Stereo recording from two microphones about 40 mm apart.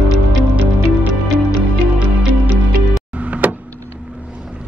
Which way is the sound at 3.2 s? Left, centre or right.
Right.